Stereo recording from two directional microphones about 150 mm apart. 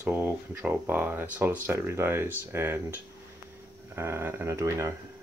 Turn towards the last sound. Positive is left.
turn(degrees=-20)  # may be behind; listen again after turning